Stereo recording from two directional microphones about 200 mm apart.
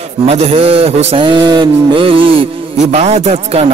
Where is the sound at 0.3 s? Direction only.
30° right (ahead or behind).